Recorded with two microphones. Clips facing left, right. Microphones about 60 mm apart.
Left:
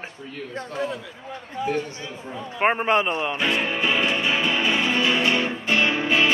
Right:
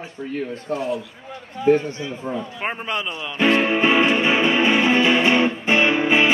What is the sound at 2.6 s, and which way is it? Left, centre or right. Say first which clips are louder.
Speech: left 8 dB; left.